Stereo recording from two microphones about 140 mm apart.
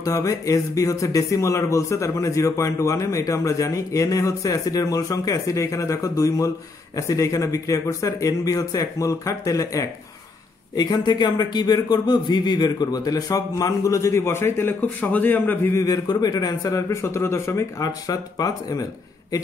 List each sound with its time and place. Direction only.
0.0 s speech: 25° left (ahead or behind)
15.8 s speech: 30° left (ahead or behind)